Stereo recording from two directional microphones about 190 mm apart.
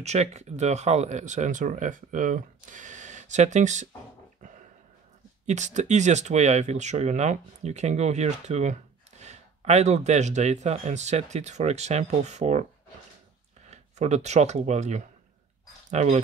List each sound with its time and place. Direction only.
0.0 s speech: 35° right (ahead or behind)
4.4 s a sound: 40° right (ahead or behind)
5.5 s speech: 40° right (ahead or behind)
13.7 s speech: 35° right (ahead or behind)